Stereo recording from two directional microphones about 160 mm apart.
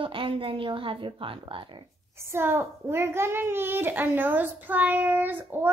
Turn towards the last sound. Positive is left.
turn(degrees=-15)  # may be behind; listen again after turning